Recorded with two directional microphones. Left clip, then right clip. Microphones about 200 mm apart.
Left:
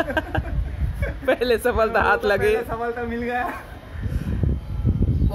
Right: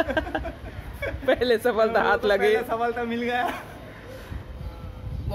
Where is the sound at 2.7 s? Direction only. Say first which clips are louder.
Even; 10° right (ahead or behind).